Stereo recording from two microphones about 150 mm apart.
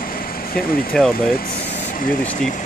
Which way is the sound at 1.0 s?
5° left (ahead or behind).